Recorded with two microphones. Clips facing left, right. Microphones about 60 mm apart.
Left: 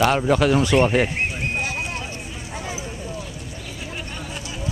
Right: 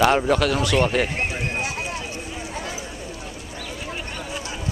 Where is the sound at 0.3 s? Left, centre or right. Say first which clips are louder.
Left 3 dB; centre.